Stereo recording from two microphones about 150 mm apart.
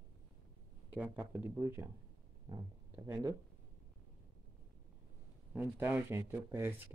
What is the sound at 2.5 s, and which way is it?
Speech, 25° right (ahead or behind).